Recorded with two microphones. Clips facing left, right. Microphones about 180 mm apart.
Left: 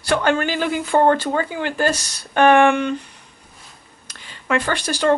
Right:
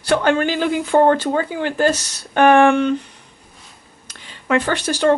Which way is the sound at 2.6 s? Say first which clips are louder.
Right 2 dB; 15° left (ahead or behind).